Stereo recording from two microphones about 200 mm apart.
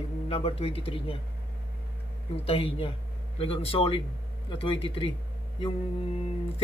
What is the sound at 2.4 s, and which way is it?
Speech, 25° left (ahead or behind).